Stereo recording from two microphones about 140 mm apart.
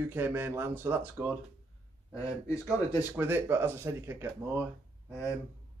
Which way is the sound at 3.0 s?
15° right (ahead or behind).